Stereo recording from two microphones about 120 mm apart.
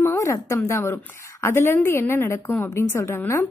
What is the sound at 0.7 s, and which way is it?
A woman's voice, 20° left (ahead or behind).